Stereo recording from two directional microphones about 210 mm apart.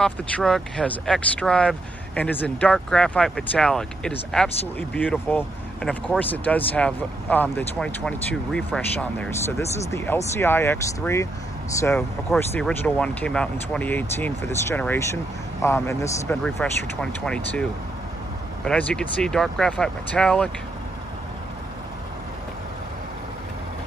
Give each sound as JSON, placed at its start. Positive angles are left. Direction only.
{"t": 0.0, "sound": "speech", "side_deg": 5}
{"t": 18.7, "sound": "speech", "side_deg": 5}